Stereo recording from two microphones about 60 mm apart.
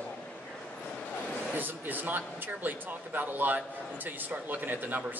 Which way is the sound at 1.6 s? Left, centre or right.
Right.